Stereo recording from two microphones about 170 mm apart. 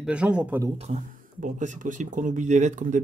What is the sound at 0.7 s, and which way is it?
Speech, 45° right (ahead or behind).